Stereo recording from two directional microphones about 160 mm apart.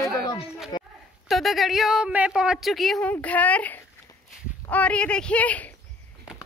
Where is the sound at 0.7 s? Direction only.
30° left (ahead or behind).